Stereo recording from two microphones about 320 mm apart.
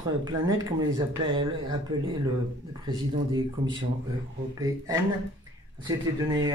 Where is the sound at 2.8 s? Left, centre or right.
Centre.